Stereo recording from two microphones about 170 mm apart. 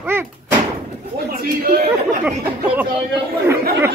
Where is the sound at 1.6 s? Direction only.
65° right (ahead or behind).